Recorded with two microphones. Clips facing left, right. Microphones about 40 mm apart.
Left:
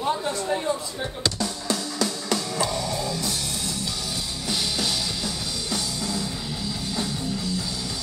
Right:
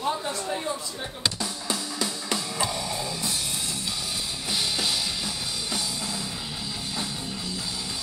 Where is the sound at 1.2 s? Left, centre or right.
Centre.